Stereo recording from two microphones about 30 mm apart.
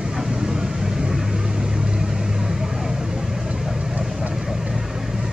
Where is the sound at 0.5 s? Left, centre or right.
Centre.